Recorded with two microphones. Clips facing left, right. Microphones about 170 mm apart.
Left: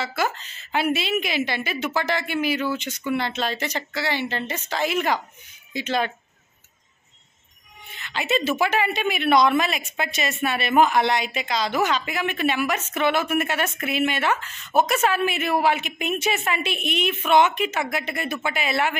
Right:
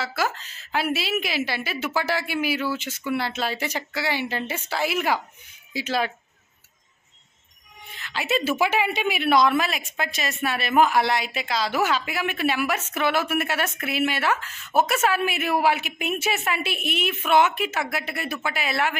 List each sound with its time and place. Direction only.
0.0 s a woman's voice: centre (ahead or behind)
8.0 s a woman's voice: 5° right (ahead or behind)